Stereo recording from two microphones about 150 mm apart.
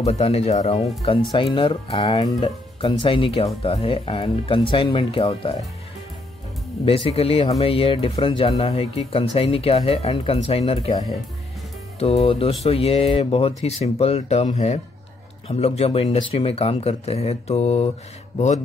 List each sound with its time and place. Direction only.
0.0 s speech: 45° left (ahead or behind)
6.9 s speech: 40° left (ahead or behind)
12.0 s speech: 40° left (ahead or behind)